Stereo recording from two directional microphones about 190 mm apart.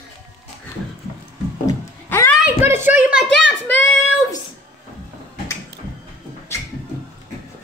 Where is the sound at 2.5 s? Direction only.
10° right (ahead or behind).